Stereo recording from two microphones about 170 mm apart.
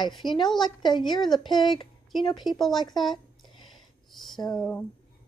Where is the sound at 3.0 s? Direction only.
Centre (ahead or behind).